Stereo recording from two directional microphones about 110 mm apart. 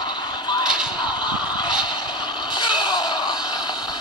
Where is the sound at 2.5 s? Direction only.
45° left (ahead or behind).